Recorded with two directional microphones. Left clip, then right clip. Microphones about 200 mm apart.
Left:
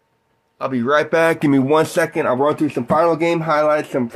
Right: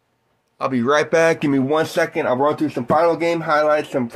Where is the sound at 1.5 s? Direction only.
20° left (ahead or behind).